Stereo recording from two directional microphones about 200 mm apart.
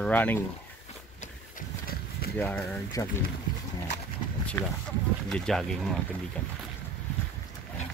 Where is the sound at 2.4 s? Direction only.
10° left (ahead or behind).